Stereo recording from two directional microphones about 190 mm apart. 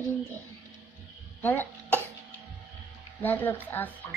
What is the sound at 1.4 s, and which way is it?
Cough, 10° left (ahead or behind).